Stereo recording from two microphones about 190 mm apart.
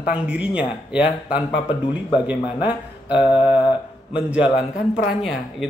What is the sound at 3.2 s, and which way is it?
Mantra, 25° left (ahead or behind).